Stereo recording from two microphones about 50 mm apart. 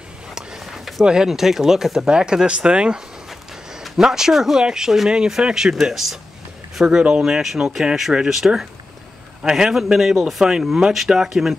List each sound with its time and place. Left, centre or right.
0.3 s a sound: centre
1.0 s a man's voice: centre
3.8 s a man's voice: centre